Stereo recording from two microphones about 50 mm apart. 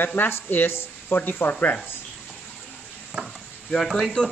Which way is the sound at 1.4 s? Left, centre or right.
Left.